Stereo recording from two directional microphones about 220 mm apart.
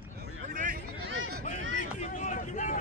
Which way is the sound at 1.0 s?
55° right (ahead or behind).